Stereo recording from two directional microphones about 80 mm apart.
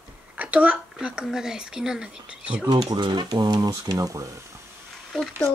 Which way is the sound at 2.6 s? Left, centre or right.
Right.